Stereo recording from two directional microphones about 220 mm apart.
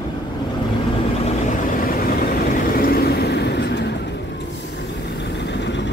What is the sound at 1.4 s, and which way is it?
Vehicle, 40° left (ahead or behind).